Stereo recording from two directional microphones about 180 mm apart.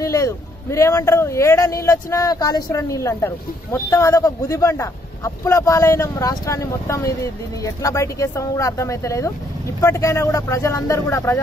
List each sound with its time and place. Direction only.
0.0 s a man's voice: 15° left (ahead or behind)